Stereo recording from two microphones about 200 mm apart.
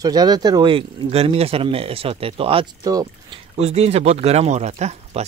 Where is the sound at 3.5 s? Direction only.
30° right (ahead or behind).